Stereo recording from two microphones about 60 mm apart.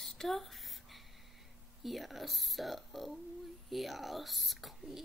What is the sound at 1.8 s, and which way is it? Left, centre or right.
Speech, centre.